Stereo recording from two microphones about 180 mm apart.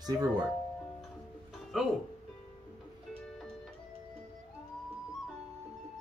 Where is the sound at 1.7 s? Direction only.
Centre (ahead or behind).